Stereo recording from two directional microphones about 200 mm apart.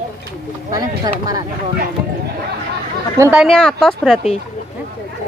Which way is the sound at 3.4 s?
5° left (ahead or behind).